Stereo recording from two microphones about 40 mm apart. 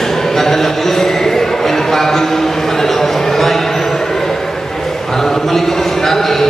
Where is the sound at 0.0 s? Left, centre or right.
Centre.